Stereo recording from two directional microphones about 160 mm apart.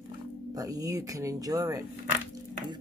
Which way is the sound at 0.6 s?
20° right (ahead or behind).